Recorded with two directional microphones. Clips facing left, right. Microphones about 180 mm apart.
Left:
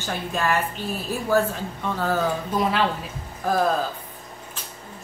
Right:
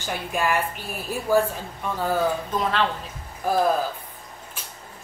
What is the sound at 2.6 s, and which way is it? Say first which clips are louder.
Speech: left 3 dB; 10° left (ahead or behind).